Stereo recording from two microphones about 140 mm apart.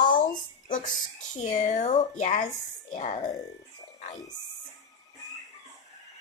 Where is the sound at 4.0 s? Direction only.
60° left (ahead or behind).